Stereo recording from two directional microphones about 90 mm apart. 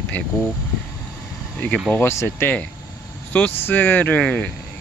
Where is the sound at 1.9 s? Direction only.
25° left (ahead or behind).